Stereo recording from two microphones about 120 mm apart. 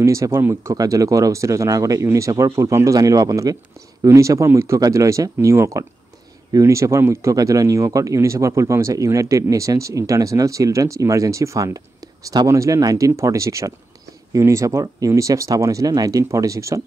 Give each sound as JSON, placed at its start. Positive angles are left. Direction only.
{"t": 0.0, "sound": "speech", "side_deg": -25}